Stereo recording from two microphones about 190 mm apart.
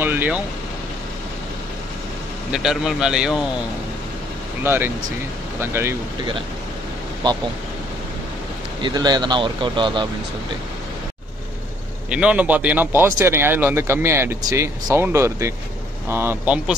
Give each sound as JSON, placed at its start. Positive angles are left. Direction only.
{"t": 0.0, "sound": "speech", "side_deg": -10}
{"t": 2.5, "sound": "speech", "side_deg": -5}
{"t": 4.6, "sound": "speech", "side_deg": -10}
{"t": 7.2, "sound": "speech", "side_deg": -20}
{"t": 8.8, "sound": "speech", "side_deg": -20}
{"t": 12.1, "sound": "speech", "side_deg": -5}